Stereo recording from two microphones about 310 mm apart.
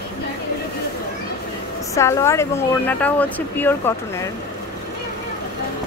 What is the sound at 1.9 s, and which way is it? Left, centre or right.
Speech, centre.